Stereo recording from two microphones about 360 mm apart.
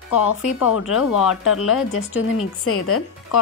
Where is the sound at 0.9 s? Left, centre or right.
Centre.